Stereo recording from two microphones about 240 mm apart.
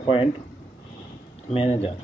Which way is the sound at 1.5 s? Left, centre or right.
Left.